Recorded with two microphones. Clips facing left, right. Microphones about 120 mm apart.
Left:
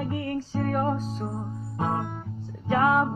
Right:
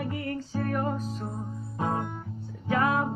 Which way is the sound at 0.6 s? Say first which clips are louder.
Left 3 dB; 35° left (ahead or behind).